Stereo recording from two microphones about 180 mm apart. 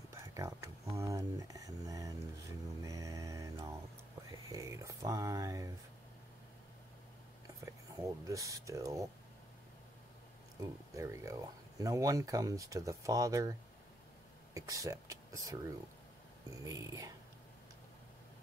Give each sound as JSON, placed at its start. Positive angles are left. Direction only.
{"t": 0.1, "sound": "a sound", "side_deg": -15}
{"t": 0.9, "sound": "speech", "side_deg": -15}
{"t": 4.3, "sound": "a sound", "side_deg": -20}
{"t": 7.4, "sound": "speech", "side_deg": -15}
{"t": 10.6, "sound": "speech", "side_deg": -15}
{"t": 16.6, "sound": "speech", "side_deg": -20}